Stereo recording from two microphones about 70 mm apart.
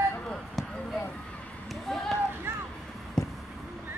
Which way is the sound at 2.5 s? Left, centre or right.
Right.